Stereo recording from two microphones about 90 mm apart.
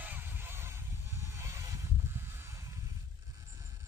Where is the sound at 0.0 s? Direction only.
20° right (ahead or behind).